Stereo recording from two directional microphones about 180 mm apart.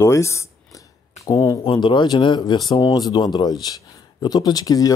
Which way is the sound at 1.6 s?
25° left (ahead or behind).